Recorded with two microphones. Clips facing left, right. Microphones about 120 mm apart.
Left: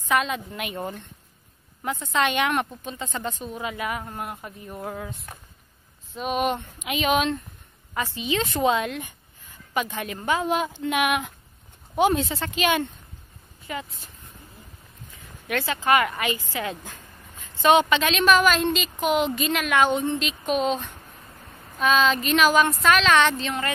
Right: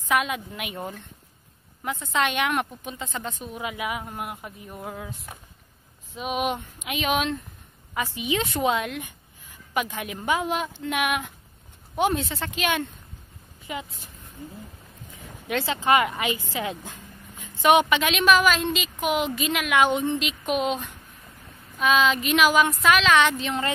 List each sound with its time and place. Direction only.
0.1 s a woman's voice: 10° right (ahead or behind)
10.5 s a woman's voice: centre (ahead or behind)
13.7 s a woman's voice: 15° right (ahead or behind)
15.4 s a woman's voice: 20° right (ahead or behind)